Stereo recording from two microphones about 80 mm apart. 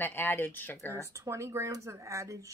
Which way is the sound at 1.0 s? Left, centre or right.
Right.